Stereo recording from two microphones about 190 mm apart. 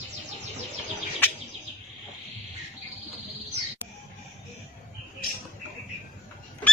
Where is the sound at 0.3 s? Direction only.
35° right (ahead or behind).